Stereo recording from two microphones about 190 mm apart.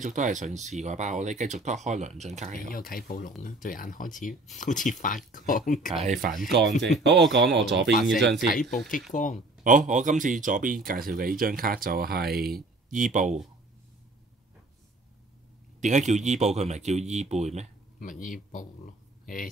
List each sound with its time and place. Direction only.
0.0 s speech: 40° right (ahead or behind)
2.7 s speech: 50° left (ahead or behind)
5.9 s speech: 40° right (ahead or behind)
7.0 s speech: 65° right (ahead or behind)
8.6 s speech: centre (ahead or behind)
9.1 s speech: 45° left (ahead or behind)
9.6 s speech: 45° right (ahead or behind)
15.8 s speech: 40° right (ahead or behind)
18.2 s speech: 45° left (ahead or behind)